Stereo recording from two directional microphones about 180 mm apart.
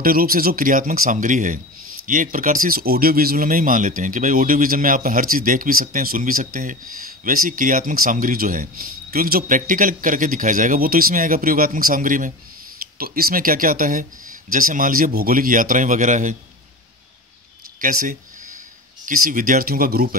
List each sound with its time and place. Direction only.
0.0 s speech: 55° right (ahead or behind)
17.7 s a sound: 50° right (ahead or behind)
19.0 s speech: 50° right (ahead or behind)